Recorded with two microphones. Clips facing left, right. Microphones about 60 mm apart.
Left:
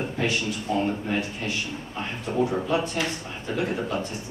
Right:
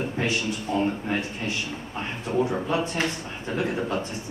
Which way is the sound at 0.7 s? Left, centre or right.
Right.